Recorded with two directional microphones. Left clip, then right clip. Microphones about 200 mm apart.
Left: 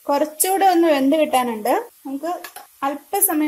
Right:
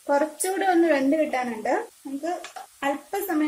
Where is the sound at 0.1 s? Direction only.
30° left (ahead or behind).